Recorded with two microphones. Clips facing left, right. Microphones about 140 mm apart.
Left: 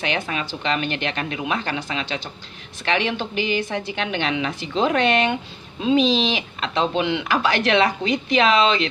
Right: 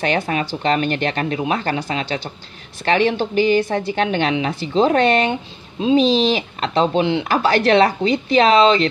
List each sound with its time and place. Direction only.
0.0 s a woman's voice: 40° right (ahead or behind)